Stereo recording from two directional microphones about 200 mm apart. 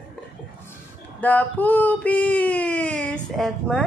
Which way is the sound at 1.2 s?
10° left (ahead or behind).